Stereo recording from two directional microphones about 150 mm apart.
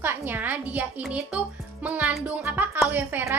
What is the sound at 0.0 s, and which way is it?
A woman's voice, 15° right (ahead or behind).